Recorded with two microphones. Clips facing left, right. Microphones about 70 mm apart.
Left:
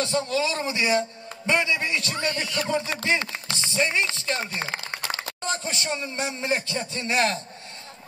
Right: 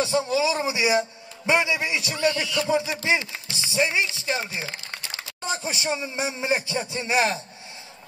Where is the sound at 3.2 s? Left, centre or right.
Left.